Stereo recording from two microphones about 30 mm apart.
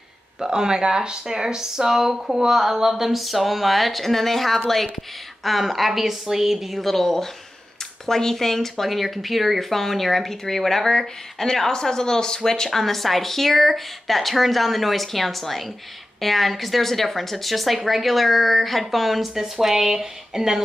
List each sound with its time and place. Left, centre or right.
0.5 s speech: right
6.8 s speech: centre
19.3 s speech: centre